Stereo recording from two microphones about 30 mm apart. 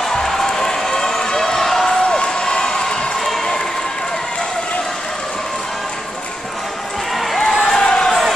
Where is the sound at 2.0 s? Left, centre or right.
Left.